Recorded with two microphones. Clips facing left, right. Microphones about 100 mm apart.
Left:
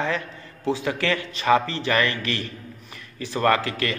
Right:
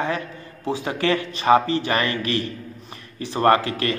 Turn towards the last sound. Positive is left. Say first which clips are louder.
# right 3 dB
turn(degrees=-25)  # may be behind; listen again after turning